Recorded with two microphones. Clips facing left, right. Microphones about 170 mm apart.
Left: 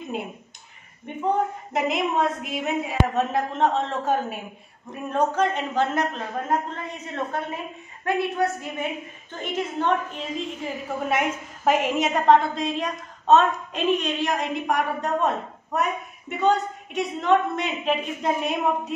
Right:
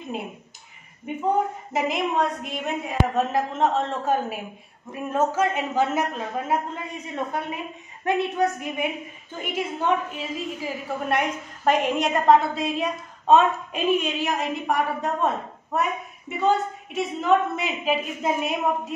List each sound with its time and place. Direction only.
0.0 s speech: centre (ahead or behind)
1.7 s a woman's voice: centre (ahead or behind)